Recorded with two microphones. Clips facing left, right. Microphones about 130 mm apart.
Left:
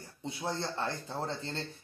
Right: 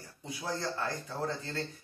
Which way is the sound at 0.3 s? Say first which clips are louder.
Even; 25° left (ahead or behind).